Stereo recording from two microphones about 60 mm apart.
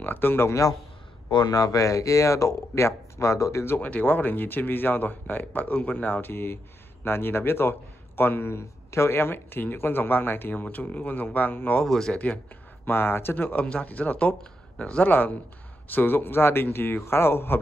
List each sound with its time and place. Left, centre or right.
0.0 s speech: left
0.5 s a man's voice: left
1.5 s speech: left
3.8 s speech: left
11.8 s speech: centre
12.8 s speech: left; by 15.0 s centre
15.0 s speech: left